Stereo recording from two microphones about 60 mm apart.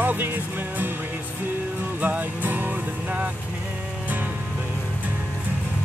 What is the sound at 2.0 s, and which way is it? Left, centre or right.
Music, right.